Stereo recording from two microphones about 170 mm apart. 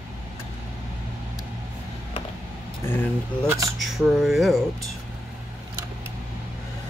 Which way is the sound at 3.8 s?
Centre (ahead or behind).